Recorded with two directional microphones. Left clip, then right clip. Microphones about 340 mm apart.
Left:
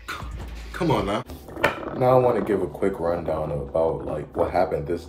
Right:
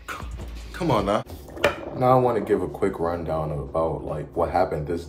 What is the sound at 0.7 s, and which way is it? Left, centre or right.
Speech, centre.